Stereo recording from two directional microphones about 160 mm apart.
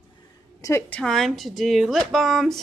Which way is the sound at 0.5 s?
20° left (ahead or behind).